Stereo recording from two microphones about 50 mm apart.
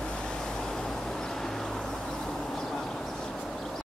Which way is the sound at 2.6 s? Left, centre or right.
Centre.